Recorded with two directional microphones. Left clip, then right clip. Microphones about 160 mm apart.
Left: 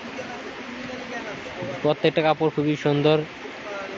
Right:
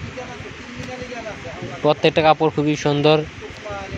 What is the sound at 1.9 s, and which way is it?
Speech, 45° right (ahead or behind).